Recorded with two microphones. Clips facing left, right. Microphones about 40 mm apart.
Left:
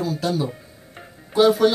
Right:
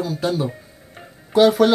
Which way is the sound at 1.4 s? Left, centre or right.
Right.